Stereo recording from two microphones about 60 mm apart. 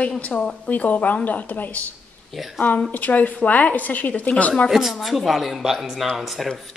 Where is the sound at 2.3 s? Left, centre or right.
Centre.